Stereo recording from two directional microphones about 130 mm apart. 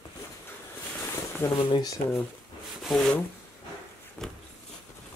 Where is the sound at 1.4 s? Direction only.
20° left (ahead or behind).